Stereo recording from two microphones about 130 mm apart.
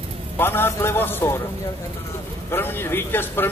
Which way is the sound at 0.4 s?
15° left (ahead or behind).